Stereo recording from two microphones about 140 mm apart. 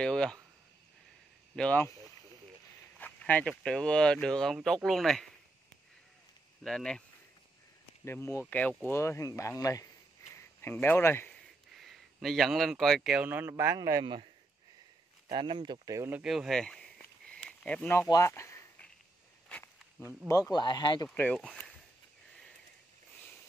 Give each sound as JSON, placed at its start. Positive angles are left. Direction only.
{"t": 0.0, "sound": "a sound", "side_deg": 5}
{"t": 1.6, "sound": "speech", "side_deg": 10}
{"t": 3.0, "sound": "speech", "side_deg": 10}
{"t": 6.6, "sound": "speech", "side_deg": 5}
{"t": 8.0, "sound": "speech", "side_deg": 20}
{"t": 11.7, "sound": "speech", "side_deg": 0}
{"t": 15.3, "sound": "speech", "side_deg": -35}
{"t": 16.2, "sound": "a sound", "side_deg": 0}
{"t": 19.5, "sound": "walk", "side_deg": 10}
{"t": 20.2, "sound": "speech", "side_deg": 20}
{"t": 21.1, "sound": "speech", "side_deg": 10}